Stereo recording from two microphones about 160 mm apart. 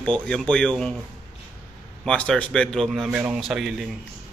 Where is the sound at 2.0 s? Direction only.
5° left (ahead or behind).